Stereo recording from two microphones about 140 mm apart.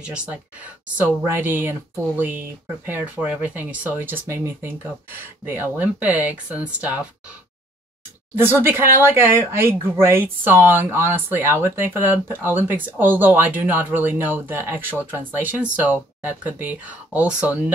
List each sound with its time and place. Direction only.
0.0 s speech: 5° right (ahead or behind)
8.4 s speech: 15° right (ahead or behind)